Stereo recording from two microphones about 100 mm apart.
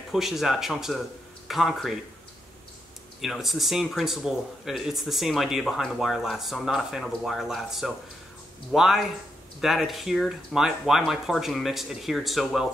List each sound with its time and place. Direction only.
0.1 s speech: 5° right (ahead or behind)
3.2 s speech: centre (ahead or behind)